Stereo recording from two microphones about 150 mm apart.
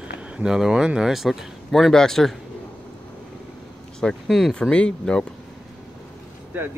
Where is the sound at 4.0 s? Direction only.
Centre (ahead or behind).